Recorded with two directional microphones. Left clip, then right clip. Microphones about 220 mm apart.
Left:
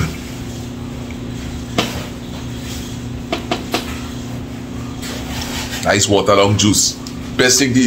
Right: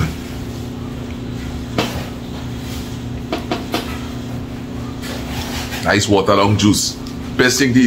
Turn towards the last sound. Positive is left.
turn(degrees=5)  # may be behind; listen again after turning